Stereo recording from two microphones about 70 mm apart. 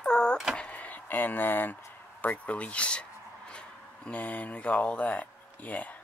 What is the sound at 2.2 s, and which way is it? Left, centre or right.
Speech, left.